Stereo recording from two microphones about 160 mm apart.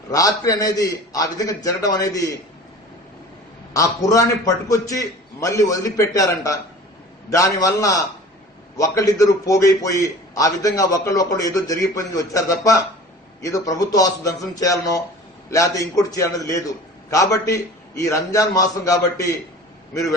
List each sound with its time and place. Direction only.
0.1 s a man's voice: 20° left (ahead or behind)
3.7 s a man's voice: 20° left (ahead or behind)